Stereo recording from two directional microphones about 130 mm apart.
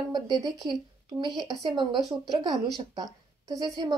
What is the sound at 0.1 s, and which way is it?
A woman's voice, 35° right (ahead or behind).